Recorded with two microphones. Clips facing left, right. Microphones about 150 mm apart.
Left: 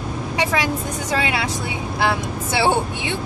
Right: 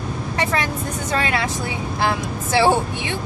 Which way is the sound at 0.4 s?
15° left (ahead or behind).